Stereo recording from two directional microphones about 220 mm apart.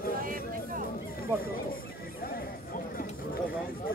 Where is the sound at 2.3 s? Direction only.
40° left (ahead or behind).